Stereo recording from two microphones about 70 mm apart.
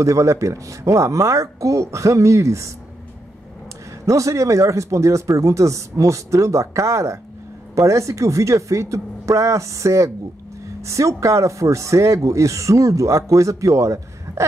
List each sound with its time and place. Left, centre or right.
0.0 s speech: right
4.0 s speech: right